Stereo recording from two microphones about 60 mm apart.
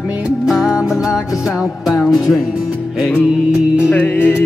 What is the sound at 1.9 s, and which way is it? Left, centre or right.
Music, centre.